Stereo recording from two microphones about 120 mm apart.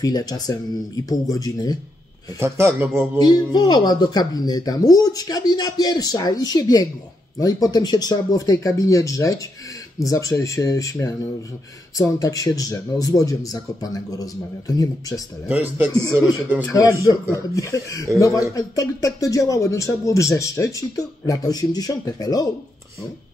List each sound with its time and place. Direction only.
0.0 s speech: 30° left (ahead or behind)
2.3 s a man's voice: 25° right (ahead or behind)
3.2 s a man's voice: 35° left (ahead or behind)
15.4 s a man's voice: 15° right (ahead or behind)
16.6 s a man's voice: 30° left (ahead or behind)